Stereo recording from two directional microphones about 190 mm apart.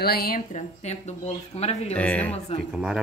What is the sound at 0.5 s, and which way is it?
Speech, 40° left (ahead or behind).